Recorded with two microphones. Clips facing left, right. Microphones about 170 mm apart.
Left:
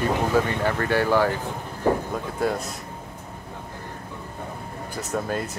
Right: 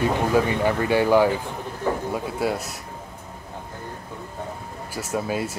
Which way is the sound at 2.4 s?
5° right (ahead or behind).